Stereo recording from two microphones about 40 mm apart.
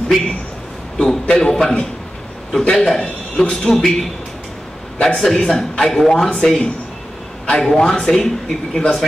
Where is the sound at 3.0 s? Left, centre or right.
Left.